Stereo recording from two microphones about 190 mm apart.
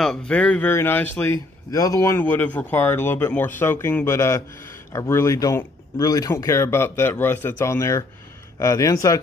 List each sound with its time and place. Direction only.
0.0 s speech: 5° left (ahead or behind)